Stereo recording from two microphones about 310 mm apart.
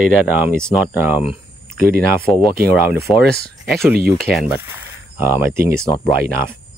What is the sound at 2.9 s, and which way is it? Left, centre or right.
Speech, centre.